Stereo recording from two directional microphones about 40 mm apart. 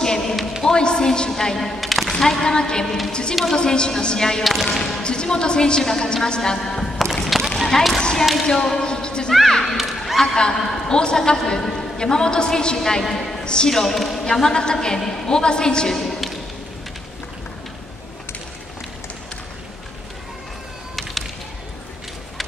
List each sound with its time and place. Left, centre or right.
0.0 s a sound: centre
0.7 s a woman's voice: centre
2.1 s a man's voice: centre
4.4 s speech: centre
4.7 s a woman's voice: left
7.2 s a sound: centre
8.0 s basketball bounce: centre
8.5 s a woman's voice: centre
9.5 s a man's voice: centre
9.8 s a sound: centre
10.2 s a man's voice: centre